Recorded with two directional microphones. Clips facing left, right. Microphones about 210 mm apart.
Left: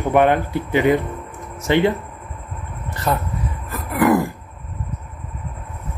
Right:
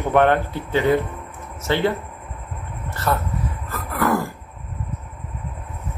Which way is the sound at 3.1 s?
20° left (ahead or behind).